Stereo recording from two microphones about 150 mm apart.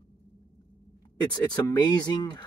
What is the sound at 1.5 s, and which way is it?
Speech, 30° left (ahead or behind).